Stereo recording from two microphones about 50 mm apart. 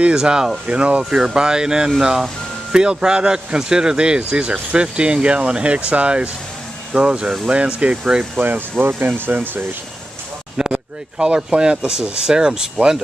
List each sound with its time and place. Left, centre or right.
0.0 s speech: centre
0.7 s speech: right
8.4 s speech: right
10.6 s speech: centre